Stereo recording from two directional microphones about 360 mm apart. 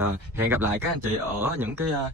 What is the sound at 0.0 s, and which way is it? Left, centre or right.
Speech, centre.